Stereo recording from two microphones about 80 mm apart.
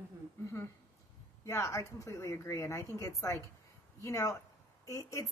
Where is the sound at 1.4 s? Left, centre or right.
Left.